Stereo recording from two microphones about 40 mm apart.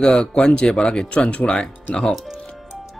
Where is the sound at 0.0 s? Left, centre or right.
Left.